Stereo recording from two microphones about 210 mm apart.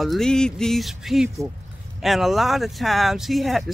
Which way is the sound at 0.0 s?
Centre (ahead or behind).